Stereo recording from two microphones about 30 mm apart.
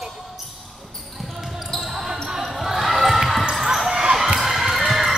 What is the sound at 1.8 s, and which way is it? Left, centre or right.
Basketball bounce, centre.